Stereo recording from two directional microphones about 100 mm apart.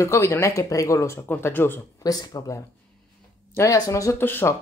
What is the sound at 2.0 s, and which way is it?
Speech, 40° left (ahead or behind).